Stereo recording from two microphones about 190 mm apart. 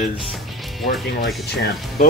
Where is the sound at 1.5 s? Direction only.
60° left (ahead or behind).